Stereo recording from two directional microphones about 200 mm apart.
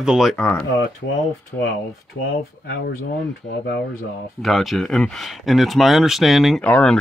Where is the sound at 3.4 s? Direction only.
60° left (ahead or behind).